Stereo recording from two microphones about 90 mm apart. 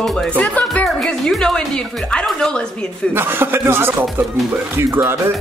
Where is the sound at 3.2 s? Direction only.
25° right (ahead or behind).